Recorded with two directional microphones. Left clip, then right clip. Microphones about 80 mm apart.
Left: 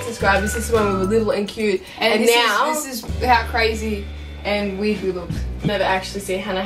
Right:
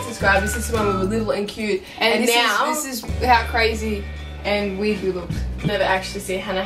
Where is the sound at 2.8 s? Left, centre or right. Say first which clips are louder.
Even; centre.